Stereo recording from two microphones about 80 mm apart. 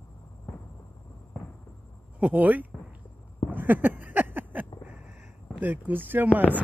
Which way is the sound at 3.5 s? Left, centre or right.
Right.